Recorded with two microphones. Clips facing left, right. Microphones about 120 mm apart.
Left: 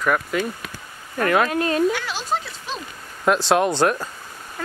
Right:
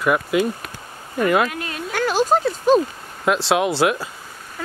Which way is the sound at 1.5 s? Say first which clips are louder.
Left 9 dB; 35° left (ahead or behind).